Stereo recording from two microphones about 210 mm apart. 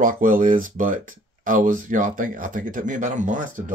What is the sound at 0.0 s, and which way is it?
Speech, 40° right (ahead or behind).